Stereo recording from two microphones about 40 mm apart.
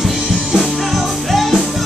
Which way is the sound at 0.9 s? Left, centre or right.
Centre.